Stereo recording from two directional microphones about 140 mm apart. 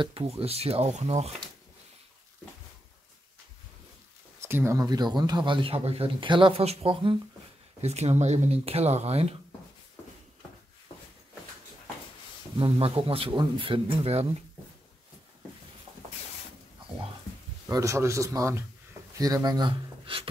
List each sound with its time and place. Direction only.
0.0 s speech: 40° right (ahead or behind)
4.4 s speech: 15° right (ahead or behind); by 7.2 s 40° right (ahead or behind)
7.8 s speech: 50° right (ahead or behind)
12.5 s speech: 40° right (ahead or behind)
17.6 s speech: 20° right (ahead or behind)